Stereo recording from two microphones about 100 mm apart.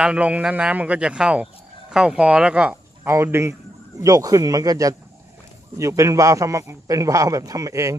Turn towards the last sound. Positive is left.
turn(degrees=-35)  # may be behind; listen again after turning